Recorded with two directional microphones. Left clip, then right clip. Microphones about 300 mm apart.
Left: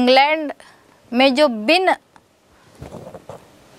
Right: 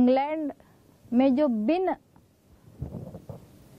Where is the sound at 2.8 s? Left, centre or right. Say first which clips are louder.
Left 8 dB; centre.